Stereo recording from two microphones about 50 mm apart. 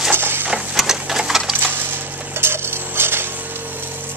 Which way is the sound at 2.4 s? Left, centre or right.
Right.